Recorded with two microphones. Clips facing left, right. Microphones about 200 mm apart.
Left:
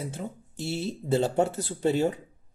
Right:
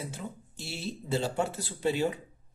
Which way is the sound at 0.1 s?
50° left (ahead or behind).